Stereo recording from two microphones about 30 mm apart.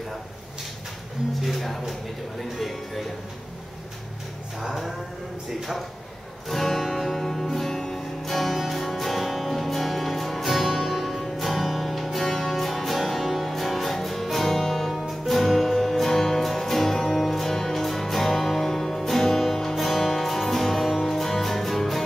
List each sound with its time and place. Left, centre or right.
1.4 s speech: centre
6.5 s music: centre
8.2 s music: centre
20.8 s music: centre
21.1 s music: centre